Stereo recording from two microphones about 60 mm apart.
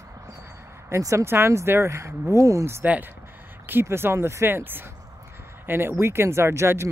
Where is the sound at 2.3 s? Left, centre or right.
Right.